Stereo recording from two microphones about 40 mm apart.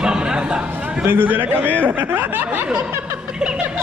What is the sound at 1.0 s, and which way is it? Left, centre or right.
A man's voice, right.